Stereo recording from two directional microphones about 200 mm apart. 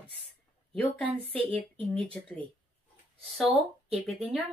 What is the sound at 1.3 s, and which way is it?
Speech, 25° right (ahead or behind).